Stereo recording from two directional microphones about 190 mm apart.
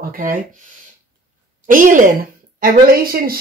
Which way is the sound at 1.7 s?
45° right (ahead or behind).